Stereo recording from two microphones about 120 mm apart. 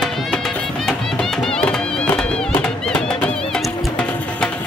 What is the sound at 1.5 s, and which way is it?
Music, 5° left (ahead or behind).